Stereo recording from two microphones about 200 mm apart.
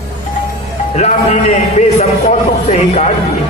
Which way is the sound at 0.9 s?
35° left (ahead or behind).